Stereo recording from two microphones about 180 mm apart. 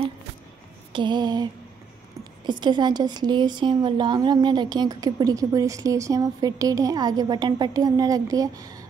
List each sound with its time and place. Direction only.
0.9 s speech: 25° right (ahead or behind)
2.6 s speech: 25° right (ahead or behind)